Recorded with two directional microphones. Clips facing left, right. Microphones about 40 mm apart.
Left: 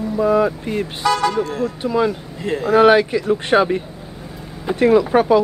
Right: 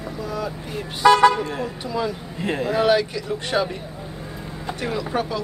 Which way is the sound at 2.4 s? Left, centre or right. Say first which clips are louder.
Left 3 dB; right.